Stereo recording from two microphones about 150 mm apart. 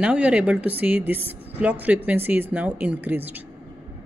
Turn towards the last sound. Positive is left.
turn(degrees=-10)  # may be behind; listen again after turning